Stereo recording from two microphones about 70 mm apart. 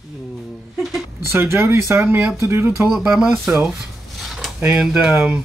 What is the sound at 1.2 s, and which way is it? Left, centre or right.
Speech, right.